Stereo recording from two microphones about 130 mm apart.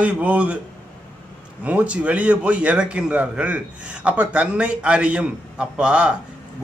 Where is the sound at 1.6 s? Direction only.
10° right (ahead or behind).